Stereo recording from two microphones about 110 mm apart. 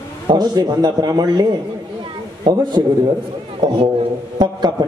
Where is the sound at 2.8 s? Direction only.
35° right (ahead or behind).